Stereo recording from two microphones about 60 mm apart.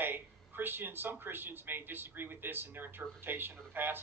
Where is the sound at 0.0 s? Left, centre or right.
Right.